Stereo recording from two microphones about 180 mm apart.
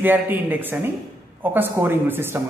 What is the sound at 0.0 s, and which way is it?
A man's voice, 10° right (ahead or behind).